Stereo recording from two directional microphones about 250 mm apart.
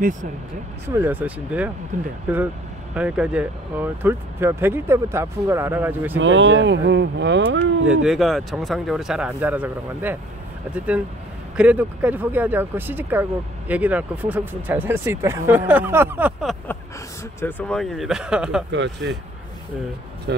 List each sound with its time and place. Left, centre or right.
0.8 s speech: centre
1.9 s speech: right
2.2 s speech: centre
6.1 s speech: right
7.9 s speech: centre
11.5 s speech: centre
18.7 s speech: right
20.3 s speech: right